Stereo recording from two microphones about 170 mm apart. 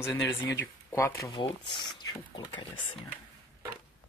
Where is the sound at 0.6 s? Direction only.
15° left (ahead or behind).